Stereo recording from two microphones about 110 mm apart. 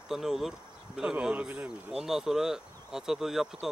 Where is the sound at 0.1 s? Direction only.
5° right (ahead or behind).